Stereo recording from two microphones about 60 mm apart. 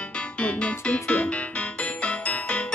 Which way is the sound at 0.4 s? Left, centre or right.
Left.